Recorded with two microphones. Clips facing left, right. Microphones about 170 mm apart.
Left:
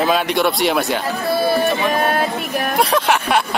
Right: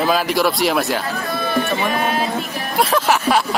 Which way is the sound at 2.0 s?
50° left (ahead or behind).